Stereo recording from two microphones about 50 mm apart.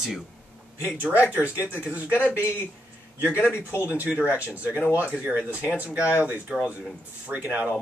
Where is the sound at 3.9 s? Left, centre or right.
Right.